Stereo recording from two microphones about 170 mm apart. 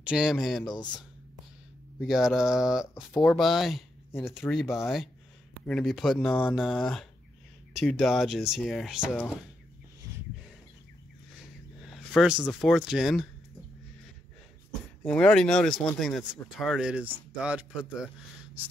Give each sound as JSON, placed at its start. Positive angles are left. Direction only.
{"t": 0.0, "sound": "speech", "side_deg": -5}
{"t": 0.7, "sound": "speech", "side_deg": 25}
{"t": 2.0, "sound": "speech", "side_deg": 0}
{"t": 2.9, "sound": "speech", "side_deg": 15}
{"t": 3.3, "sound": "speech", "side_deg": 0}
{"t": 11.8, "sound": "a sound", "side_deg": 0}
{"t": 12.4, "sound": "speech", "side_deg": 5}
{"t": 15.0, "sound": "speech", "side_deg": 5}